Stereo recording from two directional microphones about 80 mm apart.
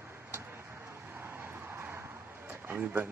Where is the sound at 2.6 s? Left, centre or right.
Right.